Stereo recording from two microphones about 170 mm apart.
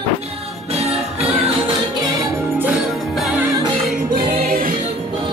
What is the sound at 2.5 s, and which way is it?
Music, 5° right (ahead or behind).